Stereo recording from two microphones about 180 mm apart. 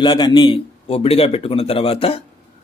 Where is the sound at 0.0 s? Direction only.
25° left (ahead or behind).